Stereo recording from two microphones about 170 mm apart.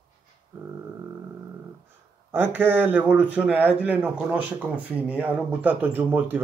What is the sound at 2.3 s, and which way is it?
Speech, 10° right (ahead or behind).